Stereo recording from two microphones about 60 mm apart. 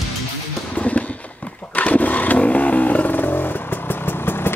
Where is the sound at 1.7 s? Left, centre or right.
Left.